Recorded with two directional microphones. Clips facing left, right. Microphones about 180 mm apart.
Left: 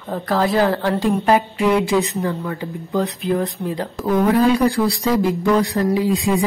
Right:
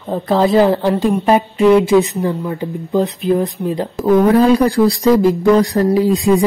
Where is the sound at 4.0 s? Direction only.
35° right (ahead or behind).